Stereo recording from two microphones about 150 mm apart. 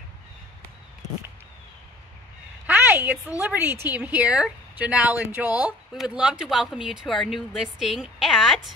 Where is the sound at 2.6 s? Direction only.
10° right (ahead or behind).